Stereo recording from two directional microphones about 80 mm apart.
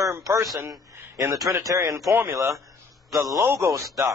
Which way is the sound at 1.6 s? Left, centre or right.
Right.